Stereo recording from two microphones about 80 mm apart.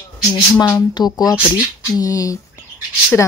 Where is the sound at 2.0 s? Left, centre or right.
Left.